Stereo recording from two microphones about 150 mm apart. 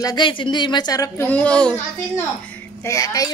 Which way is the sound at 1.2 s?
10° left (ahead or behind).